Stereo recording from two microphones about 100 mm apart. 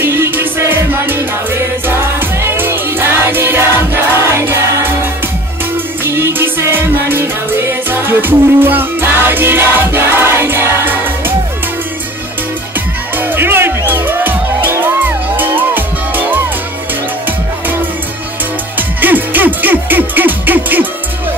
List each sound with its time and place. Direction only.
0.0 s music: 25° right (ahead or behind)
13.1 s music: 20° right (ahead or behind)
18.8 s music: 20° right (ahead or behind)